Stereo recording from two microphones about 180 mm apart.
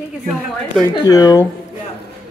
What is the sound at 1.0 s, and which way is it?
Speech, 20° left (ahead or behind).